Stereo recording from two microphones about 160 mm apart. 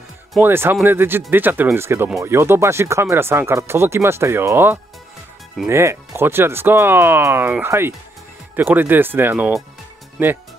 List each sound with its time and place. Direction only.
0.4 s speech: 15° right (ahead or behind)